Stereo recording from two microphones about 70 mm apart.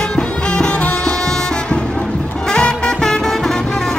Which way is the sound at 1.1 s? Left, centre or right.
Centre.